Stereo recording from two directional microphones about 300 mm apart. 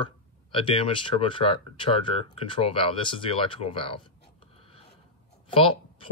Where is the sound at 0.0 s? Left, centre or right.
Centre.